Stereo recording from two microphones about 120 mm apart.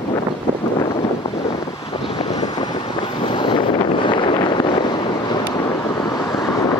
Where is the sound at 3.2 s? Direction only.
45° left (ahead or behind).